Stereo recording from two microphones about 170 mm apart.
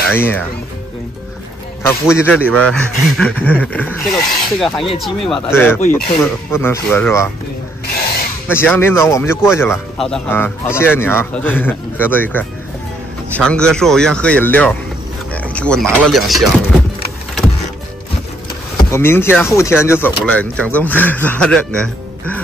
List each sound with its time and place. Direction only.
0.1 s a man's voice: 10° left (ahead or behind)
1.8 s a man's voice: 15° left (ahead or behind)
5.5 s a man's voice: 15° left (ahead or behind)
7.8 s a sound: 65° left (ahead or behind)
8.5 s a man's voice: 10° left (ahead or behind)
9.9 s a man's voice: 5° left (ahead or behind)
18.9 s a man's voice: 15° left (ahead or behind)